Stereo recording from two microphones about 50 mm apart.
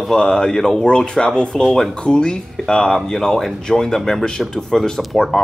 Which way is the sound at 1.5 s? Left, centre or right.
Centre.